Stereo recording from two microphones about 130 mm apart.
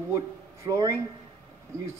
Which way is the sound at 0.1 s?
25° right (ahead or behind).